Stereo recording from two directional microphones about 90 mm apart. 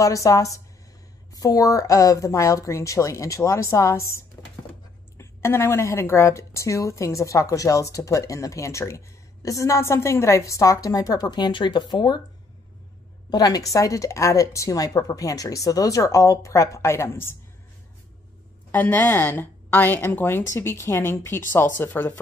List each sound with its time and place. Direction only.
0.0 s a woman's voice: 35° left (ahead or behind)
11.3 s speech: 55° left (ahead or behind)
13.3 s a woman's voice: 45° left (ahead or behind); by 17.4 s 30° left (ahead or behind)
18.7 s a woman's voice: 20° left (ahead or behind)